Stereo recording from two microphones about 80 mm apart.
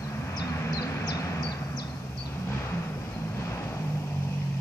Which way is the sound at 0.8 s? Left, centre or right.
Left.